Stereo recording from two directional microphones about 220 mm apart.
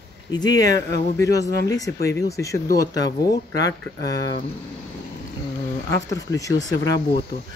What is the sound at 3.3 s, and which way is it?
Speech, 50° left (ahead or behind).